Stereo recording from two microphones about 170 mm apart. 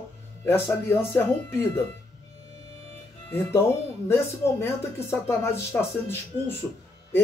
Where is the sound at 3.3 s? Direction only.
15° left (ahead or behind).